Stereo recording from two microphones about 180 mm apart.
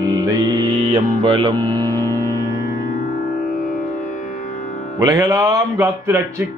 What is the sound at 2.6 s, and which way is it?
Music, 60° left (ahead or behind).